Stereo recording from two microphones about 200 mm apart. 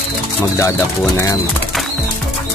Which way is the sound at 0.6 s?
15° left (ahead or behind).